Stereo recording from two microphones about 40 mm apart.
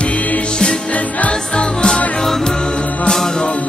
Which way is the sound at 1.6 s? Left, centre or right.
Left.